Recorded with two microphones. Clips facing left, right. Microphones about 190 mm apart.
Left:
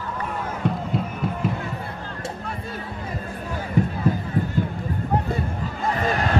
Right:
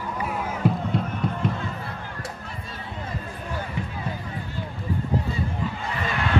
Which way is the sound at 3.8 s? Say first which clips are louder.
Left 10 dB; 40° left (ahead or behind).